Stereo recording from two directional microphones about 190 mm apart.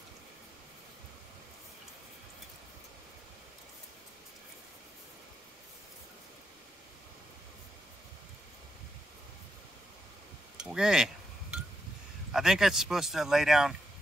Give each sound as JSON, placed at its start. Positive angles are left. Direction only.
{"t": 10.6, "sound": "speech", "side_deg": -5}
{"t": 12.3, "sound": "speech", "side_deg": 0}